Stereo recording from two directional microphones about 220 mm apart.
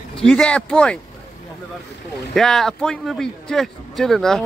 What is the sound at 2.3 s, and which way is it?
A man's voice, centre (ahead or behind).